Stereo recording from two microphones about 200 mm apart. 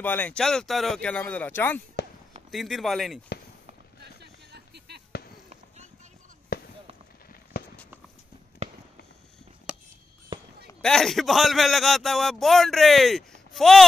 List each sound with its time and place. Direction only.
0.0 s a man's voice: 10° left (ahead or behind)
2.0 s basketball bounce: 55° left (ahead or behind)
2.5 s a man's voice: centre (ahead or behind)
4.0 s a sound: 55° right (ahead or behind)
6.5 s fireworks: 50° left (ahead or behind)
10.8 s a man's voice: centre (ahead or behind)